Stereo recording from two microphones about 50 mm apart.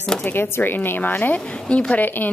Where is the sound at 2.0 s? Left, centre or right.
Left.